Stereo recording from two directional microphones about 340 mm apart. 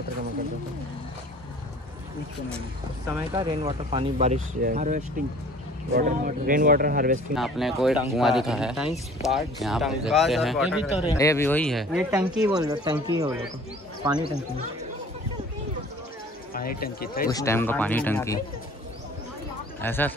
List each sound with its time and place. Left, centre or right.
3.2 s speech: centre
7.3 s speech: centre
11.1 s speech: centre
16.5 s speech: left
17.3 s speech: centre
19.8 s speech: centre